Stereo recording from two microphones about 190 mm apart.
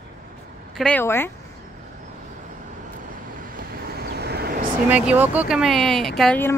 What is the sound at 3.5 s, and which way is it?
Vehicle, 55° right (ahead or behind).